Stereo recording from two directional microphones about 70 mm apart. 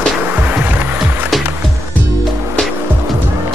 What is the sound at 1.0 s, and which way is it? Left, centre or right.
Music, right.